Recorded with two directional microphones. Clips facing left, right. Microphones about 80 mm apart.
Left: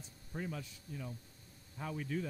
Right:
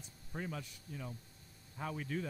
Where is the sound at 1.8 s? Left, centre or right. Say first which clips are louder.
Even; right.